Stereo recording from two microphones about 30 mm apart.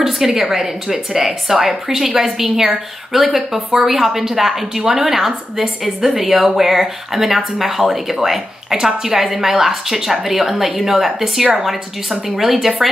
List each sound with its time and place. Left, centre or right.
0.0 s speech: centre